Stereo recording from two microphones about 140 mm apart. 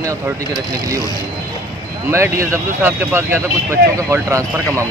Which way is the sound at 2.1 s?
20° right (ahead or behind).